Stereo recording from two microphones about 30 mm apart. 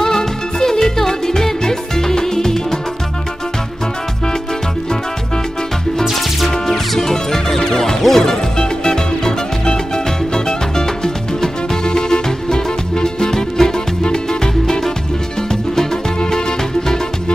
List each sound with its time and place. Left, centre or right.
0.0 s music: centre
6.5 s music: centre
8.5 s music: left
16.3 s music: left